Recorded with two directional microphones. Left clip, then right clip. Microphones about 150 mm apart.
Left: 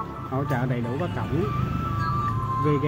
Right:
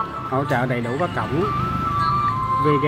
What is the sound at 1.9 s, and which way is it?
Music, 35° left (ahead or behind).